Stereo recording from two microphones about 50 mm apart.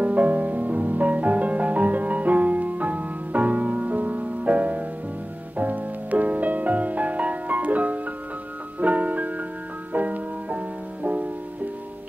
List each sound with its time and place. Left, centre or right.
0.0 s music: right